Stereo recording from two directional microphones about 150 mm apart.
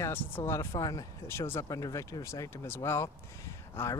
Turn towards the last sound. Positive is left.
turn(degrees=15)  # may be behind; listen again after turning